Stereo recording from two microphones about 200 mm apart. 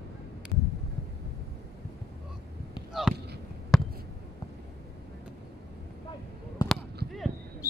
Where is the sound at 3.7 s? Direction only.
Centre (ahead or behind).